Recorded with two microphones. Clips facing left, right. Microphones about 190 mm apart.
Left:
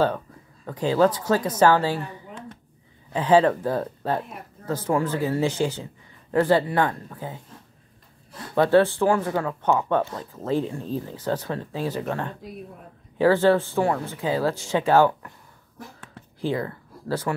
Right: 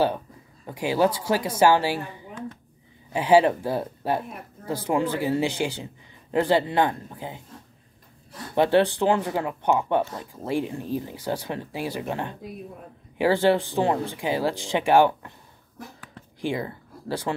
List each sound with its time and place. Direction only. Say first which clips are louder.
0.7 s speech: left 2 dB; 10° right (ahead or behind)
3.1 s speech: even; 10° right (ahead or behind)
8.5 s speech: left 2 dB; 15° right (ahead or behind)
16.3 s speech: left 2 dB; 15° right (ahead or behind)